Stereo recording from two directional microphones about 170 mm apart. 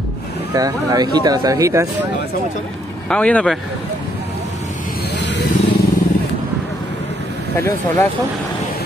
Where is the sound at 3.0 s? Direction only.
10° left (ahead or behind).